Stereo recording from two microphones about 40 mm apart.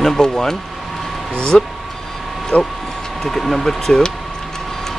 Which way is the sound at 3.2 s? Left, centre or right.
Centre.